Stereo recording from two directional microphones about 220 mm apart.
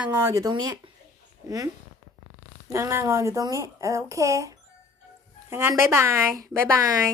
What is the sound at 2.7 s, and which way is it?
A woman's voice, 15° right (ahead or behind).